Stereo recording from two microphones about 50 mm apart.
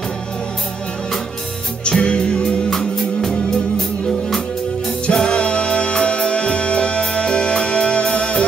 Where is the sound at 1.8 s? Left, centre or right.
Centre.